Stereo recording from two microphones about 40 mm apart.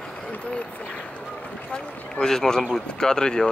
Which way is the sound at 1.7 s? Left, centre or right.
Centre.